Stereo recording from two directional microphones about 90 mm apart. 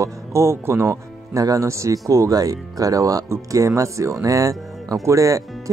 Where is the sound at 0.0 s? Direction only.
35° right (ahead or behind).